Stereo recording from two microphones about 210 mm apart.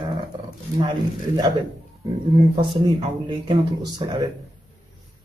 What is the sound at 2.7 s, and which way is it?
Speech, 25° right (ahead or behind).